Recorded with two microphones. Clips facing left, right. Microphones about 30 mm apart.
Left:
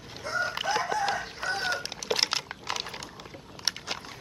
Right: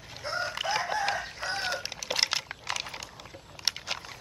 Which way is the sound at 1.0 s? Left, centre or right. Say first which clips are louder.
Left 1 dB; centre.